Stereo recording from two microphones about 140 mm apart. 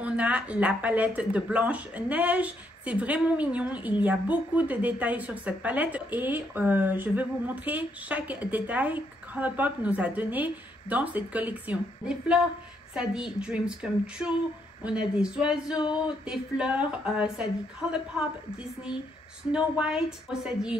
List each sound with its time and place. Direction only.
0.0 s a woman's voice: 10° right (ahead or behind)
15.8 s a sound: 35° left (ahead or behind)
16.3 s a woman's voice: 5° right (ahead or behind)
19.5 s a woman's voice: 5° right (ahead or behind)